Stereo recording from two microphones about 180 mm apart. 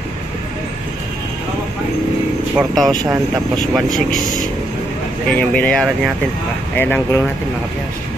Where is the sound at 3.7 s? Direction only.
Centre (ahead or behind).